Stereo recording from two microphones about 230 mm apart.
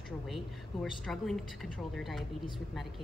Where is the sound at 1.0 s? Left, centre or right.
Centre.